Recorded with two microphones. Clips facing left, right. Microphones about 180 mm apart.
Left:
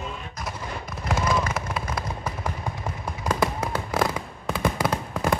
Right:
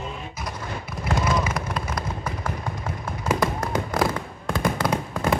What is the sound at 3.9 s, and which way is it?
Fireworks, 5° left (ahead or behind).